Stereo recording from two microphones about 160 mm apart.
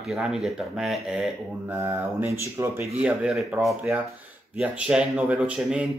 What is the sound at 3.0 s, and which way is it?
Speech, 5° right (ahead or behind).